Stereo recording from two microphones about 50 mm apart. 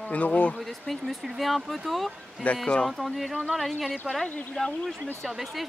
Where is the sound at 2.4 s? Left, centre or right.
Left.